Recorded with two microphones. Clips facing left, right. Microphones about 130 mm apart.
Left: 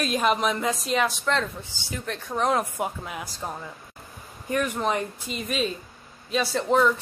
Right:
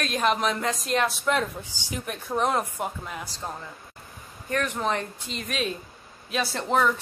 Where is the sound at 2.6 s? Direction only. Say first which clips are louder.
Left 2 dB; 10° left (ahead or behind).